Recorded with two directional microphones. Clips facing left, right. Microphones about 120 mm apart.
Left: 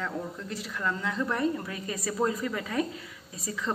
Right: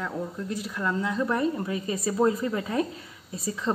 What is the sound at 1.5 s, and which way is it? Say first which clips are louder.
Speech: right 5 dB; 25° right (ahead or behind).